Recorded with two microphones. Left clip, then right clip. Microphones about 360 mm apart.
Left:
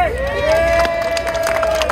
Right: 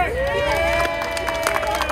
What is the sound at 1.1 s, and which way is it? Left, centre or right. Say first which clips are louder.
Run: left 4 dB; left.